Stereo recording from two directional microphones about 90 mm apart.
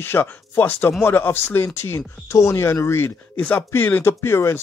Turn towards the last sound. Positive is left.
turn(degrees=25)  # may be behind; listen again after turning